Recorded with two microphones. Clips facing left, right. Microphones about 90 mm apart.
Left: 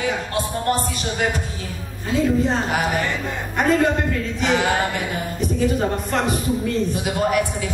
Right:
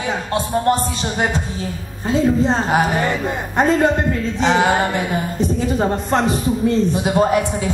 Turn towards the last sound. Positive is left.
turn(degrees=-25)  # may be behind; listen again after turning